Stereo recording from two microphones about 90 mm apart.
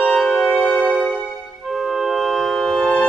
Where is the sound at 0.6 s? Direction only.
10° left (ahead or behind).